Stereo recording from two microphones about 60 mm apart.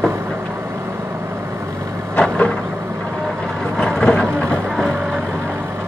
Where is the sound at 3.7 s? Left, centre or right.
Centre.